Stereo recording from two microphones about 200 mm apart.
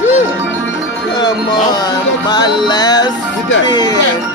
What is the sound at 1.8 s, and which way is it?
Speech, 20° left (ahead or behind).